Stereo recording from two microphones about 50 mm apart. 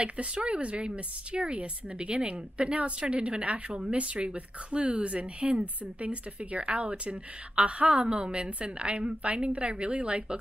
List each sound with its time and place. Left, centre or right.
0.0 s speech: right